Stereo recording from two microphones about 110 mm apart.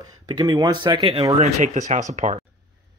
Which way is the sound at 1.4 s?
90° right.